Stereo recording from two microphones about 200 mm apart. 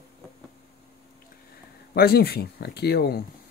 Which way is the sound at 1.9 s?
50° left (ahead or behind).